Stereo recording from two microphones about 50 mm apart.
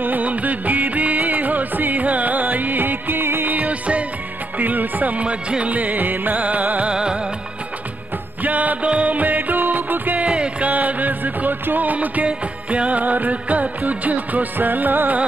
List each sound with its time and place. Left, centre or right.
0.0 s music: right
3.5 s music: right
6.9 s music: centre
8.4 s music: right
10.2 s music: right